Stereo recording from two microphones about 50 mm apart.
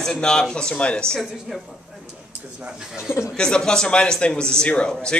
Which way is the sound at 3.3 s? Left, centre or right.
Centre.